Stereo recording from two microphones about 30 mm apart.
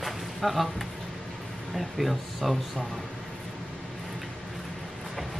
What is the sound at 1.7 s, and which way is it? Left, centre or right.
Speech, centre.